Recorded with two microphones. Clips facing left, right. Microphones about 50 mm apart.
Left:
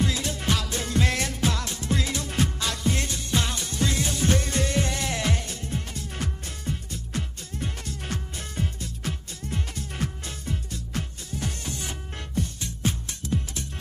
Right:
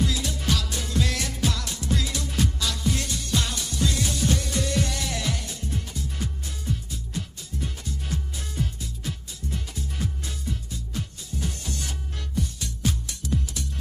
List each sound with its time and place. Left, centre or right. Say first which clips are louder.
0.0 s music: even; left
5.9 s music: even; left
10.9 s music: left 2 dB; left
12.4 s music: even; left